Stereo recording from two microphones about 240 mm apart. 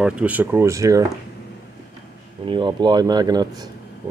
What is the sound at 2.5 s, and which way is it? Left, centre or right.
Speech, centre.